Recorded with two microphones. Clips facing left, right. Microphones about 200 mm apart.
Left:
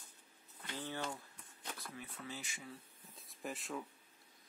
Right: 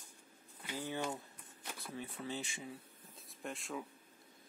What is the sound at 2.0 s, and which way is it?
Speech, 30° right (ahead or behind).